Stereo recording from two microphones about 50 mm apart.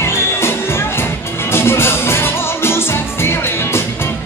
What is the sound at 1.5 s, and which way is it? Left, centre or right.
Music, left.